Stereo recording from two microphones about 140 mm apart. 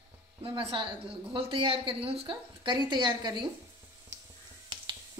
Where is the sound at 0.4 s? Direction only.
40° right (ahead or behind).